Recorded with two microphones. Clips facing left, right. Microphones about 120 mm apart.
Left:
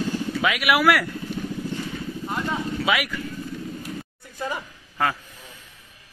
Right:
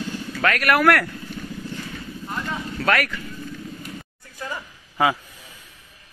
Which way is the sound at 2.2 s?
10° left (ahead or behind).